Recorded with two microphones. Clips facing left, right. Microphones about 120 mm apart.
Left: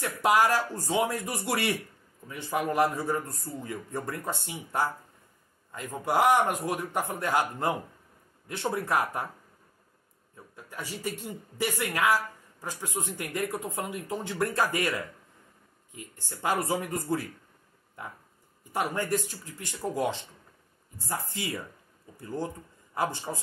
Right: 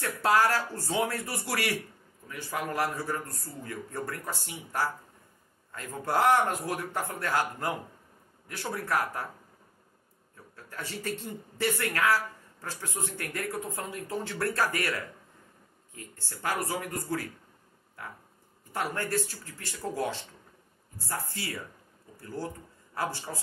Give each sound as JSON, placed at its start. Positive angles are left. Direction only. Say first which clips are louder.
{"t": 0.0, "sound": "speech", "louder": "left 1 dB", "side_deg": 15}
{"t": 10.5, "sound": "speech", "louder": "even", "side_deg": 15}